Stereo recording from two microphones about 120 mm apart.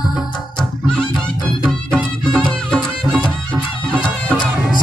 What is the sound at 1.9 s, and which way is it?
Music, 10° left (ahead or behind).